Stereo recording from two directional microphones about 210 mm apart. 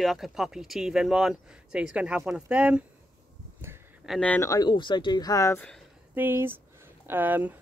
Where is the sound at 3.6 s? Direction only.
10° right (ahead or behind).